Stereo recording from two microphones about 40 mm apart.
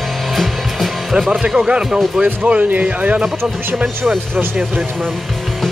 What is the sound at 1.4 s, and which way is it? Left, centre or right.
Speech, right.